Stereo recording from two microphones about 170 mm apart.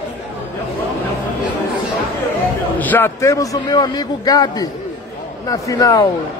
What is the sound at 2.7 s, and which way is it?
A man's voice, 10° left (ahead or behind).